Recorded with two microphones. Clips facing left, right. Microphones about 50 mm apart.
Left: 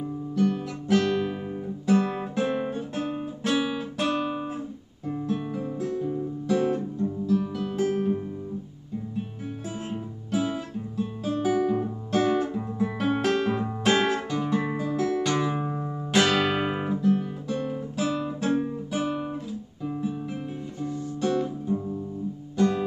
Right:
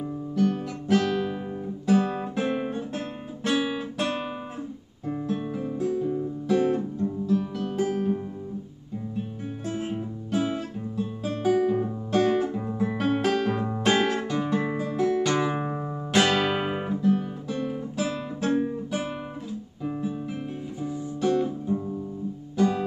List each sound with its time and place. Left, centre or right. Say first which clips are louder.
0.0 s guitar: even; centre
5.0 s music: even; centre
9.7 s music: right 6 dB; centre
15.5 s music: right 1 dB; right
16.1 s guitar: even; centre